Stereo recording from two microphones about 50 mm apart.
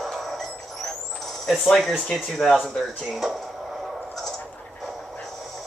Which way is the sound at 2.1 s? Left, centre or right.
Centre.